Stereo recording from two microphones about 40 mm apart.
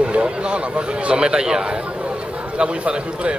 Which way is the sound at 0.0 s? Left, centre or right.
Right.